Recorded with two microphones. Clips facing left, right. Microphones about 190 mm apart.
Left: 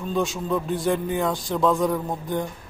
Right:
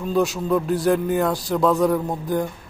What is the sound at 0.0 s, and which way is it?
Speech, 5° right (ahead or behind).